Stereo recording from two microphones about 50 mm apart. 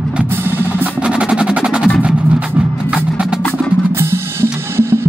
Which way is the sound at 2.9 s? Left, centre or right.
Centre.